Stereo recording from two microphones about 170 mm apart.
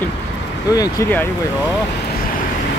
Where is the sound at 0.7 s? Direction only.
20° left (ahead or behind).